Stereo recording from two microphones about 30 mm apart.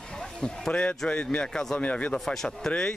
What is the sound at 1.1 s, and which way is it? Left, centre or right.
Speech, left.